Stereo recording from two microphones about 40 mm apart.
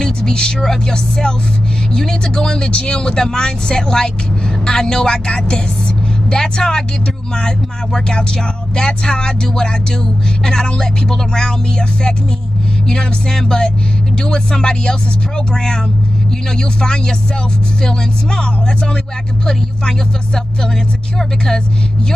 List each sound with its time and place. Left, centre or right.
0.0 s speech: centre
12.8 s speech: centre
17.8 s speech: centre